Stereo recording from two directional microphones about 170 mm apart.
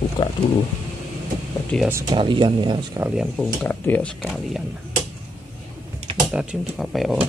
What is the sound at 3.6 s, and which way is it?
Speech, 10° left (ahead or behind).